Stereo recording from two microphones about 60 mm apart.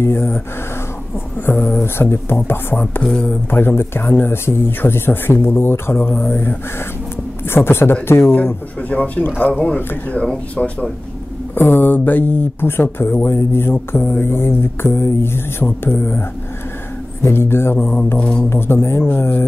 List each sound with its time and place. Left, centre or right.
0.0 s speech: left
1.4 s speech: left
2.8 s speech: left
3.4 s speech: left
8.8 s speech: left
11.5 s speech: left
17.7 s speech: left
18.5 s speech: left